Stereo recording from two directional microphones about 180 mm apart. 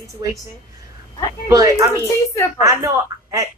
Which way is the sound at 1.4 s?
15° right (ahead or behind).